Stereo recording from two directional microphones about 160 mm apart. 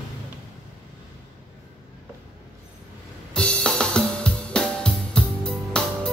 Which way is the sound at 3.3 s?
5° left (ahead or behind).